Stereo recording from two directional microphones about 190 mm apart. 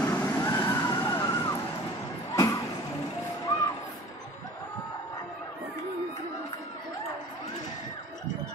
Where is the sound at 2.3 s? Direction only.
15° left (ahead or behind).